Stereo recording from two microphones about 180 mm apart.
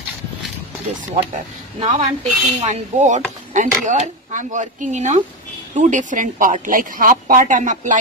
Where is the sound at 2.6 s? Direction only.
40° right (ahead or behind).